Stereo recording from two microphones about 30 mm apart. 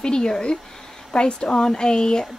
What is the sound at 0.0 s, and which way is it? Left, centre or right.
A woman's voice, left.